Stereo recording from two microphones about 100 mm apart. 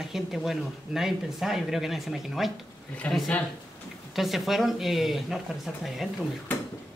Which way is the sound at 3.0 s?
15° left (ahead or behind).